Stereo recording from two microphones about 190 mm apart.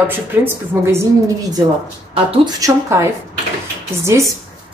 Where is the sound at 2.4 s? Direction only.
15° right (ahead or behind).